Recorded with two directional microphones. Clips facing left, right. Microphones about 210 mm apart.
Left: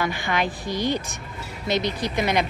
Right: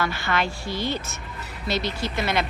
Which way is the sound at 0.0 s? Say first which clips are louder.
Left 1 dB; 15° left (ahead or behind).